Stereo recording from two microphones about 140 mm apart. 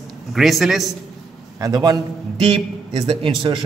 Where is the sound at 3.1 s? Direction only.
40° right (ahead or behind).